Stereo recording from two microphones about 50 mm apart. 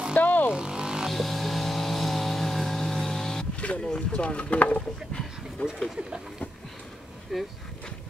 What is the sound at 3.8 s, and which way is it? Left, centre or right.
Speech, left.